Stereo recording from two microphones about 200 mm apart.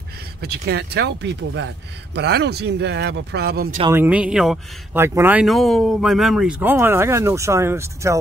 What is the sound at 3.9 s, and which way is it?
Speech, 10° right (ahead or behind).